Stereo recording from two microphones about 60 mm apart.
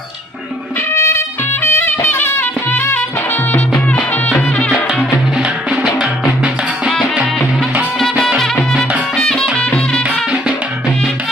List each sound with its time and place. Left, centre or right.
0.9 s music: left
1.5 s music: left
5.4 s music: centre
9.1 s music: centre